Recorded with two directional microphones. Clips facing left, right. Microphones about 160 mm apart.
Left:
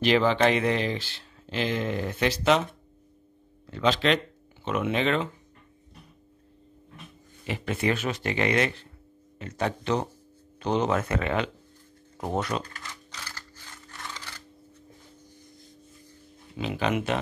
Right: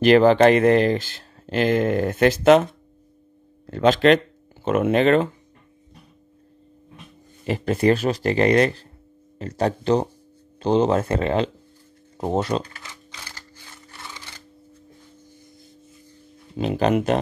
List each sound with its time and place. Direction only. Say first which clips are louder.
0.0 s speech: right 8 dB; 50° right (ahead or behind)
7.4 s speech: right 8 dB; 40° right (ahead or behind)
13.7 s a sound: even; 10° right (ahead or behind)
16.5 s speech: right 7 dB; 40° right (ahead or behind)